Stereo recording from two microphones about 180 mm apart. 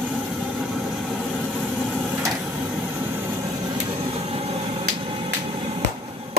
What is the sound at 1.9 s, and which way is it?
Printer, 10° right (ahead or behind).